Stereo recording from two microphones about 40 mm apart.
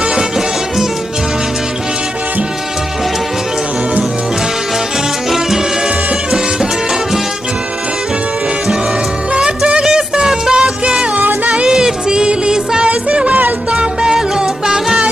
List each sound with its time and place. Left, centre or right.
9.3 s music: right
11.1 s music: right
11.5 s music: centre